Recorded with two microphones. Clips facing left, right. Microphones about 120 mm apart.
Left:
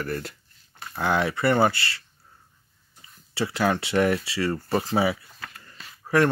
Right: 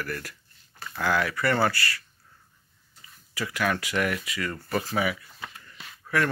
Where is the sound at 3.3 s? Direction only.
30° left (ahead or behind).